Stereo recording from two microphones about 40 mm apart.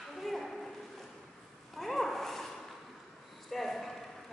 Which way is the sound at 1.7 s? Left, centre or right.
Centre.